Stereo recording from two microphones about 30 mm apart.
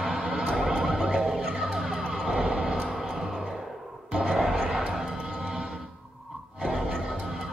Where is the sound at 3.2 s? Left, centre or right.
Right.